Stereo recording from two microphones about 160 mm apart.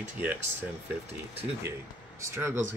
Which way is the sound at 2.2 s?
15° right (ahead or behind).